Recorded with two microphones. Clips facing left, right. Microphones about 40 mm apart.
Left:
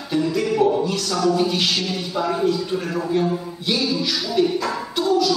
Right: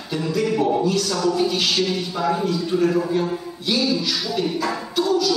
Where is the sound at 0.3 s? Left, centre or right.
Centre.